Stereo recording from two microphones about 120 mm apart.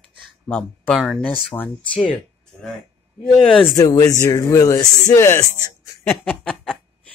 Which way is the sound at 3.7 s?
30° left (ahead or behind).